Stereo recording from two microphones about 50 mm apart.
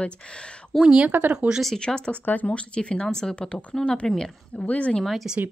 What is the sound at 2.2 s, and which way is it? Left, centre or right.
Speech, left.